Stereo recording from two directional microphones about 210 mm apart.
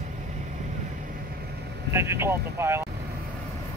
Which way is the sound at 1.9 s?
10° right (ahead or behind).